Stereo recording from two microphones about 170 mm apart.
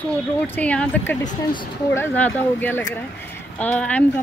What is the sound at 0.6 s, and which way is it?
Speech, 10° left (ahead or behind).